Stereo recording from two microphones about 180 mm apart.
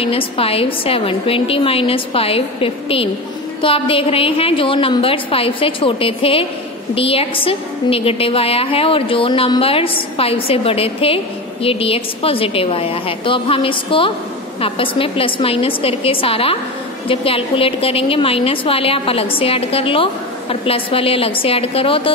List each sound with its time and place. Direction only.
0.0 s a woman's voice: 30° left (ahead or behind)